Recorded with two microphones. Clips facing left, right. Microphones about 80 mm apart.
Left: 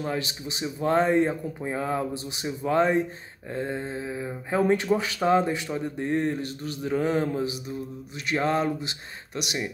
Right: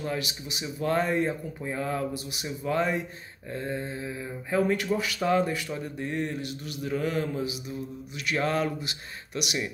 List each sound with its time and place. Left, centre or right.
0.0 s speech: left